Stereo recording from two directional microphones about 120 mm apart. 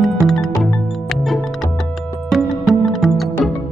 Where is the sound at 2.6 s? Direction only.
Centre (ahead or behind).